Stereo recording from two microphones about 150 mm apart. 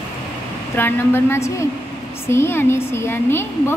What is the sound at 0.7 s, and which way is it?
A woman's voice, 15° left (ahead or behind).